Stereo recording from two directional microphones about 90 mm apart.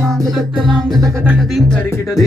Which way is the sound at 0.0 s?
5° left (ahead or behind).